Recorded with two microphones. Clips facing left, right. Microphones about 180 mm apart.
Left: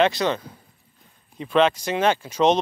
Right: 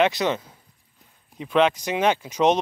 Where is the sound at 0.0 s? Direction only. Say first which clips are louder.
Left 1 dB; 20° right (ahead or behind).